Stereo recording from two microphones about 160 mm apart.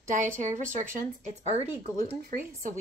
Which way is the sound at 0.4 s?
50° right (ahead or behind).